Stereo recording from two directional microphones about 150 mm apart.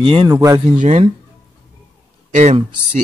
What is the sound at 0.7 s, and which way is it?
Speech, 50° right (ahead or behind).